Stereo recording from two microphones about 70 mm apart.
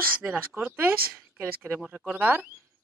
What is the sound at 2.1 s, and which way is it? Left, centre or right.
Speech, right.